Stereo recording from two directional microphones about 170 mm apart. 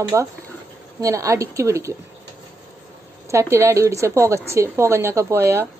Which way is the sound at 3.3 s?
15° right (ahead or behind).